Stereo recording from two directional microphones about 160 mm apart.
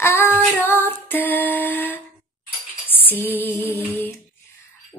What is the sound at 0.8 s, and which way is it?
Mantra, 10° left (ahead or behind).